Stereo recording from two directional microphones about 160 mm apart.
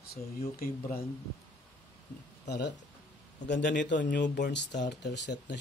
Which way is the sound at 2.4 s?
90° left.